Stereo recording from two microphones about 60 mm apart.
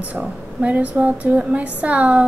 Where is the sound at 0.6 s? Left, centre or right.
Right.